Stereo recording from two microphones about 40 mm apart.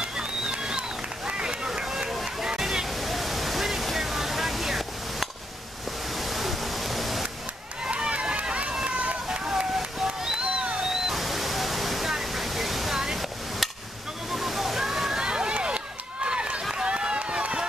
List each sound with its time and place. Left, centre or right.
0.0 s run: right
2.2 s music: centre
2.9 s waterfall: centre
6.1 s pink noise: centre
7.8 s run: right
9.5 s a sound: centre
10.4 s a sound: right
11.1 s waterfall: centre
13.6 s chop: centre
14.3 s slosh: centre; by 16.6 s right
16.7 s run: right